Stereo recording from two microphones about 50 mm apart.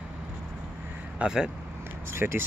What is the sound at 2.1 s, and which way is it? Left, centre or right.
Speech, right.